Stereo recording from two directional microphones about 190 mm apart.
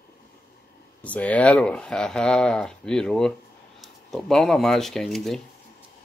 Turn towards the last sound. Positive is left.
turn(degrees=0)  # may be behind; listen again after turning